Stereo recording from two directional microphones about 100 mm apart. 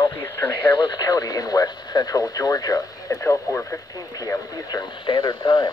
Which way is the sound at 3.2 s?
25° left (ahead or behind).